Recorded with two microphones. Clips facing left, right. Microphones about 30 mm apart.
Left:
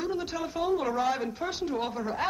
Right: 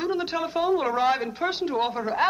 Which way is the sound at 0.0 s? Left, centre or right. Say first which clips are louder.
Right 5 dB; right.